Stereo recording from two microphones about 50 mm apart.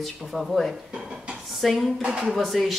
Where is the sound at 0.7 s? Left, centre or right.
Centre.